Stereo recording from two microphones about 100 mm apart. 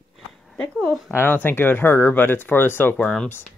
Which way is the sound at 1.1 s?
20° left (ahead or behind).